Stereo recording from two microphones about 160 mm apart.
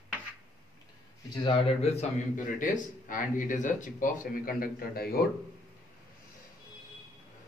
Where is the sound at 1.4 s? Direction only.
35° left (ahead or behind); by 5.2 s 70° left (ahead or behind).